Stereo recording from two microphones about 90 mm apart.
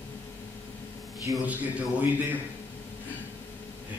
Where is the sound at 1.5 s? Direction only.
20° right (ahead or behind).